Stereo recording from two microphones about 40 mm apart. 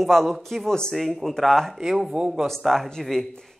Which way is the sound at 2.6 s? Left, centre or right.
Centre.